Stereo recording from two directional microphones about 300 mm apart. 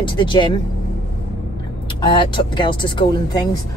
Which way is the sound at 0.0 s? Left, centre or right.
Centre.